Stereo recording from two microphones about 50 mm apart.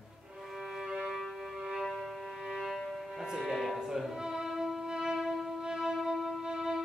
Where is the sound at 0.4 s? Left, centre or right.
Centre.